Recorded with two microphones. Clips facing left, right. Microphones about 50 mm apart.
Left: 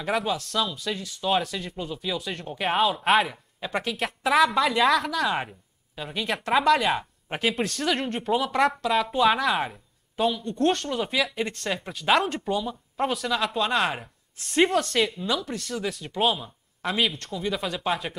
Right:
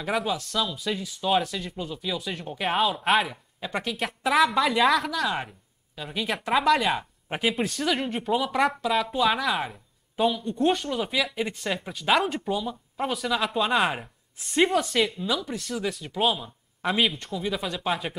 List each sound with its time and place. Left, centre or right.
0.0 s speech: centre
10.2 s speech: centre
16.8 s a man's voice: right
17.3 s speech: centre